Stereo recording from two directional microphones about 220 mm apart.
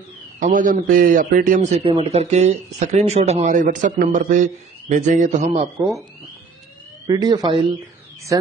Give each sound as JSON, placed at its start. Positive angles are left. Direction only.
{"t": 0.4, "sound": "a man's voice", "side_deg": -35}
{"t": 7.1, "sound": "speech", "side_deg": -15}